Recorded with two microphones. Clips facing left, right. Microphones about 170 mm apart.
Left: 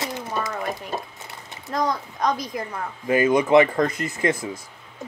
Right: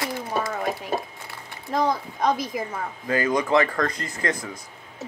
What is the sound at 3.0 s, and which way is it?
Speech, 20° left (ahead or behind).